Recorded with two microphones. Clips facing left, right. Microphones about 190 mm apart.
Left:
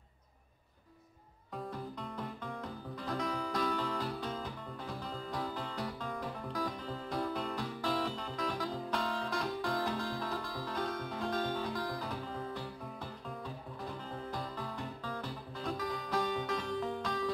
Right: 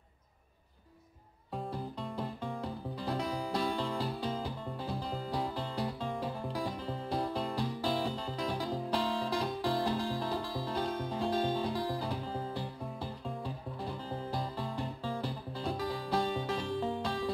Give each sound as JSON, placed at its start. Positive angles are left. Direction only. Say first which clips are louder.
{"t": 1.7, "sound": "music", "louder": "right 3 dB", "side_deg": -30}
{"t": 14.3, "sound": "music", "louder": "right 4 dB", "side_deg": -30}